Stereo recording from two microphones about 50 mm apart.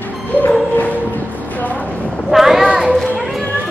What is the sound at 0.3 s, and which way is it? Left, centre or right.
Music, right.